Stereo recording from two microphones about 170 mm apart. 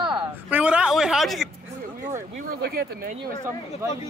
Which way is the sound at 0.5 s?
5° right (ahead or behind).